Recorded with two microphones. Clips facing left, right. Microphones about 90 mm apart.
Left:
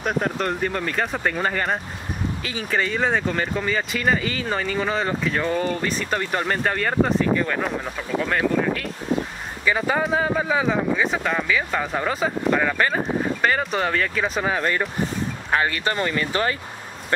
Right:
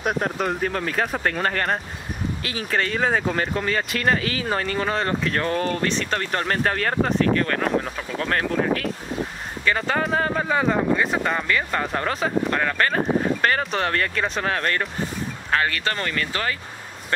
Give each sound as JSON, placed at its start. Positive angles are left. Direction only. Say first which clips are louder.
{"t": 0.0, "sound": "speech", "louder": "even", "side_deg": 0}
{"t": 15.5, "sound": "speech", "louder": "left 1 dB", "side_deg": 20}